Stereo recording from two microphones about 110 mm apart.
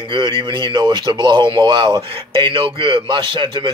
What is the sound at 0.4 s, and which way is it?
A man's voice, 45° right (ahead or behind).